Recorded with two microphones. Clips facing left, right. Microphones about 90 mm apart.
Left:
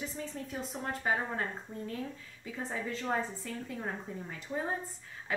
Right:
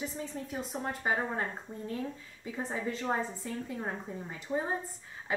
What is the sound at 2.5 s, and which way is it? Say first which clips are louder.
A woman's voice: right 2 dB; 20° right (ahead or behind).